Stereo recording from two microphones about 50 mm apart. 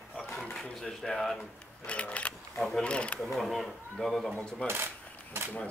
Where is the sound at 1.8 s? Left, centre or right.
Left.